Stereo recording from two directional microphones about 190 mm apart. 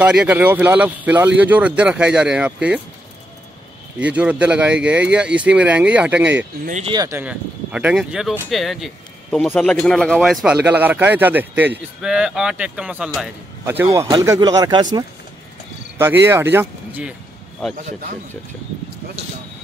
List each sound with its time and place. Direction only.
0.0 s speech: 5° right (ahead or behind)
4.0 s speech: 5° right (ahead or behind)
6.6 s speech: 40° right (ahead or behind)
6.9 s speech: 15° right (ahead or behind)
13.7 s speech: 15° right (ahead or behind)
16.5 s speech: 10° right (ahead or behind)